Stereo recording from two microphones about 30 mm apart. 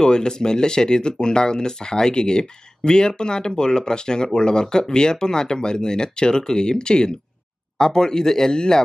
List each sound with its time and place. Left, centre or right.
0.0 s speech: left